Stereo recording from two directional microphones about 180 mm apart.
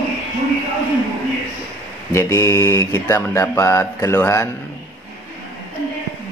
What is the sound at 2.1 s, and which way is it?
Mantra, 20° left (ahead or behind).